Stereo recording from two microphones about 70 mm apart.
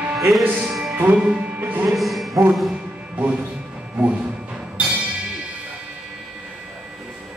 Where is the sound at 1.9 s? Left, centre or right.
Centre.